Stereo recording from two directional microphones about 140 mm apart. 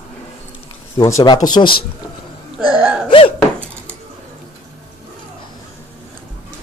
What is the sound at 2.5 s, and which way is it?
Hiccup, 10° right (ahead or behind).